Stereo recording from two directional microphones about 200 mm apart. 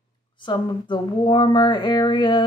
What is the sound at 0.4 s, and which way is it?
Speech, 25° left (ahead or behind).